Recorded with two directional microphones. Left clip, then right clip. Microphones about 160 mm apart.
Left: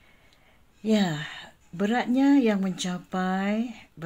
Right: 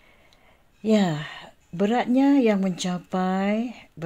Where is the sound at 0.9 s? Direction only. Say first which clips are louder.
Right 3 dB; 40° right (ahead or behind).